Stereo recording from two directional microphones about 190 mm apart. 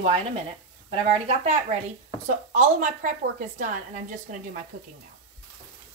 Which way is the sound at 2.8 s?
40° right (ahead or behind).